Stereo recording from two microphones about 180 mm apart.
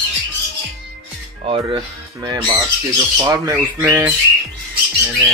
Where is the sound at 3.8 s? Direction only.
10° right (ahead or behind).